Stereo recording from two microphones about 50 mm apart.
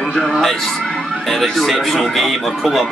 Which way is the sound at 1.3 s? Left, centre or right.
Centre.